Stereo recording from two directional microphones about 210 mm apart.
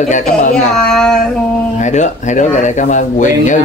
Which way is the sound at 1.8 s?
35° left (ahead or behind).